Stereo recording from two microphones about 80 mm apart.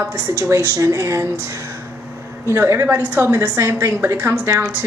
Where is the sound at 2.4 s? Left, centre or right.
Right.